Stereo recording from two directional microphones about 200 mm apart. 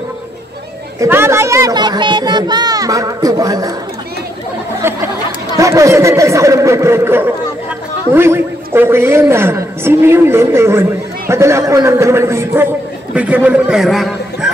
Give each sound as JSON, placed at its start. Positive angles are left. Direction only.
{"t": 0.9, "sound": "a woman's voice", "side_deg": -15}
{"t": 4.8, "sound": "chatter", "side_deg": -10}
{"t": 5.6, "sound": "a woman's voice", "side_deg": -15}